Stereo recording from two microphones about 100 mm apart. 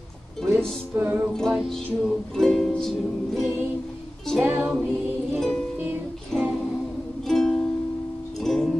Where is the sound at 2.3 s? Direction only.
5° left (ahead or behind).